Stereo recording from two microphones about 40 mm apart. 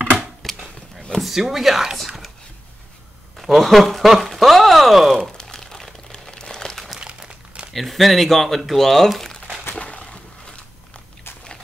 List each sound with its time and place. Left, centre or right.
0.4 s a sound: centre
1.4 s speech: centre
2.0 s whispering: centre
3.3 s speech: centre
5.4 s crumpling: centre
7.0 s crumpling: right
7.7 s speech: centre
9.8 s a sound: left